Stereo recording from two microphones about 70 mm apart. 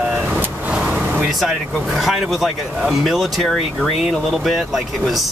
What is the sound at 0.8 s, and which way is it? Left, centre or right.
Vehicle, centre.